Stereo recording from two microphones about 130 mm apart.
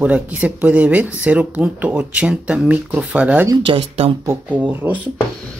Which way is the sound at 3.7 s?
45° right (ahead or behind).